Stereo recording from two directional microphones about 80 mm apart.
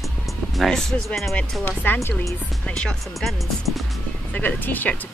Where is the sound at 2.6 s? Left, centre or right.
Centre.